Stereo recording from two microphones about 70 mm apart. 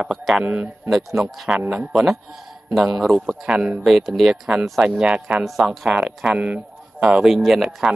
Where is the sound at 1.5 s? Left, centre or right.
Centre.